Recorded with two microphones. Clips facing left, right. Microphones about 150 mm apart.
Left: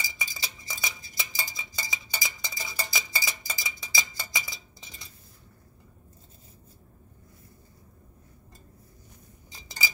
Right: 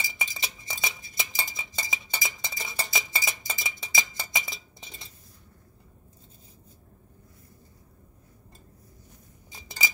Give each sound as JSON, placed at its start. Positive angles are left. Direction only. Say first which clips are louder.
{"t": 0.0, "sound": "cutlery", "louder": "right 2 dB", "side_deg": -25}